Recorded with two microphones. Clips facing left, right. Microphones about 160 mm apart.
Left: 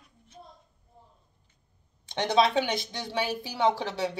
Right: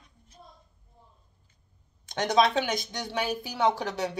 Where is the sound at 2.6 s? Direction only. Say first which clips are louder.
Even; 30° left (ahead or behind).